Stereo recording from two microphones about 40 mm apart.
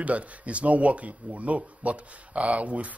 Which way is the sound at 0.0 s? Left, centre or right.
Right.